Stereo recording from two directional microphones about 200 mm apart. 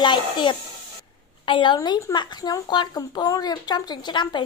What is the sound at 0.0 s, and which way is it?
A woman's voice, 25° left (ahead or behind).